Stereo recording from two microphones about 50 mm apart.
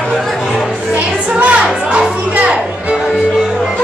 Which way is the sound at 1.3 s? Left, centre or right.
Right.